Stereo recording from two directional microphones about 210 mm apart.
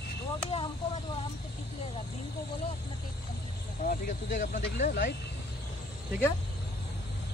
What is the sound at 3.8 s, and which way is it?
Speech, 40° left (ahead or behind).